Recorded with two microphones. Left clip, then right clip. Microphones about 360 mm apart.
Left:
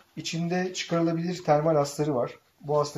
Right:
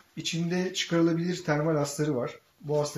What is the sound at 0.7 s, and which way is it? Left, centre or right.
Speech, centre.